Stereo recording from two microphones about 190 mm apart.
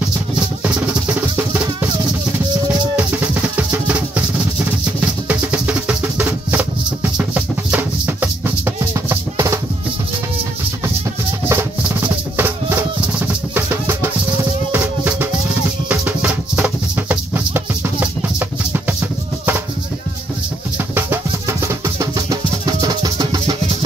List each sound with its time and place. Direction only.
5.3 s music: 5° right (ahead or behind)
11.4 s music: 10° right (ahead or behind)
20.9 s music: 10° right (ahead or behind)